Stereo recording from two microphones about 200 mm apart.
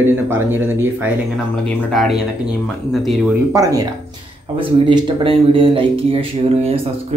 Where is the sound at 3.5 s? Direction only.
20° right (ahead or behind).